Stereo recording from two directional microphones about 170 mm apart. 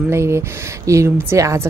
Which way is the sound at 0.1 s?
15° right (ahead or behind).